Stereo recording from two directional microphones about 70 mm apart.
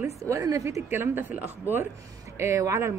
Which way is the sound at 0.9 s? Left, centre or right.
Right.